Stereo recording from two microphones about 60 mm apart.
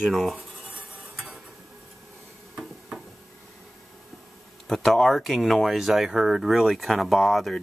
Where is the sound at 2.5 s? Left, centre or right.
Centre.